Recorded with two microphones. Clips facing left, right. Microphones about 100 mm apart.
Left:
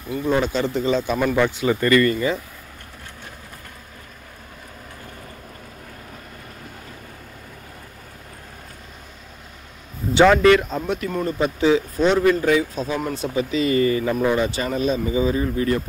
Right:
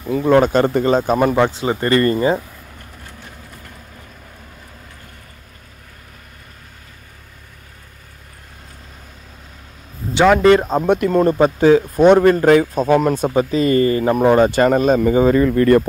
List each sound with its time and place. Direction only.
0.1 s speech: 75° right (ahead or behind)
0.4 s a man's voice: 50° right (ahead or behind)
1.3 s speech: 30° right (ahead or behind)
10.4 s speech: 35° right (ahead or behind)
10.9 s speech: 75° right (ahead or behind)
11.3 s a man's voice: 50° right (ahead or behind); by 15.8 s 65° right (ahead or behind)